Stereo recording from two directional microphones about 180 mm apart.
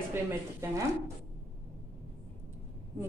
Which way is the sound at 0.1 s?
15° right (ahead or behind).